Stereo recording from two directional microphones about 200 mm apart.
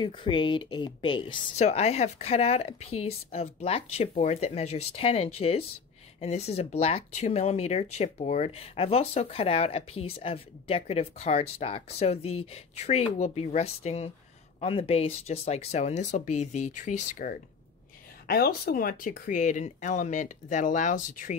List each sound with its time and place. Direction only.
0.0 s speech: 25° left (ahead or behind); by 17.4 s 40° left (ahead or behind)
18.2 s speech: 50° left (ahead or behind)